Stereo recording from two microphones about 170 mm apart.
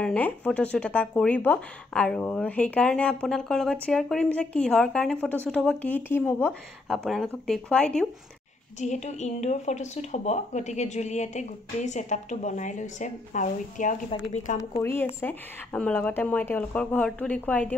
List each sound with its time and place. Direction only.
0.0 s a woman's voice: 10° left (ahead or behind)
6.9 s a woman's voice: centre (ahead or behind)
8.7 s speech: 45° left (ahead or behind)
14.6 s speech: 15° left (ahead or behind)